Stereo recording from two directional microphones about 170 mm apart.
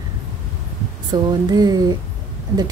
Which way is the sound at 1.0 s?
25° right (ahead or behind).